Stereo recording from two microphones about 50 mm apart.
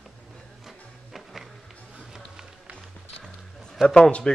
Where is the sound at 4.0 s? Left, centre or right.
Left.